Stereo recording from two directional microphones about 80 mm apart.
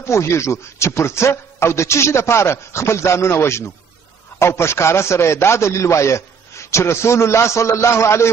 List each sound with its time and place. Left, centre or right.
0.0 s a man's voice: left